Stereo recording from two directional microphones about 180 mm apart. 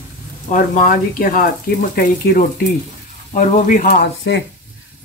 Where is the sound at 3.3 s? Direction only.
40° left (ahead or behind).